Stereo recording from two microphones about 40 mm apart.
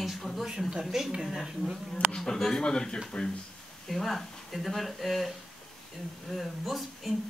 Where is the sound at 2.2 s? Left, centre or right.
Centre.